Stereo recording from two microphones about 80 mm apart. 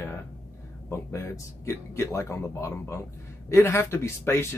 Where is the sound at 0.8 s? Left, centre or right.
Left.